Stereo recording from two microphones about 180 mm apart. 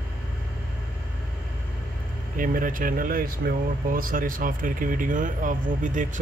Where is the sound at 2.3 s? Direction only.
50° right (ahead or behind).